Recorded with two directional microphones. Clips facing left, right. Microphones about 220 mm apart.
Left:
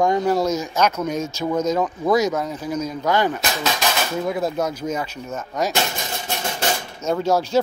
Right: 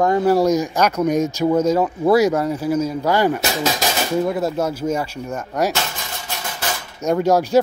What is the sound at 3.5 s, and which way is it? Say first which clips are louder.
Speech: right 3 dB; 35° right (ahead or behind).